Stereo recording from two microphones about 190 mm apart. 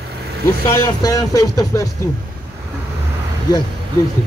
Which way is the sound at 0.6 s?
15° left (ahead or behind).